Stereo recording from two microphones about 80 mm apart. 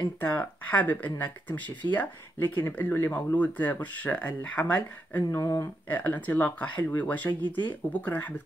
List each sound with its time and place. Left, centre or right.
0.2 s speech: centre
5.3 s speech: left
5.6 s speech: left